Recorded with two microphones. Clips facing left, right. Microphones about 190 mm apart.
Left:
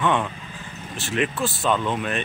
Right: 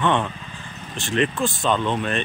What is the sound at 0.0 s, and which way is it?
Speech, 10° left (ahead or behind).